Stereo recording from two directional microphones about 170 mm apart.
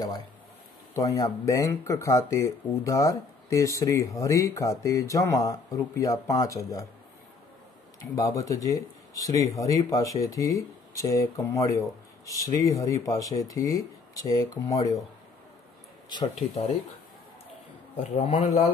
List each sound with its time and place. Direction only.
0.9 s speech: 20° left (ahead or behind)
8.2 s speech: 20° left (ahead or behind)
18.1 s speech: 35° left (ahead or behind)